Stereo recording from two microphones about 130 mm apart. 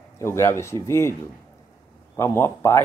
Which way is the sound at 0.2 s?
20° left (ahead or behind).